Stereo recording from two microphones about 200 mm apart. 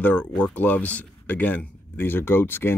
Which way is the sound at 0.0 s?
5° left (ahead or behind).